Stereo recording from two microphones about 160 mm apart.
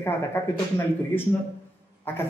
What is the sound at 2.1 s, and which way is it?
Speech, 15° left (ahead or behind).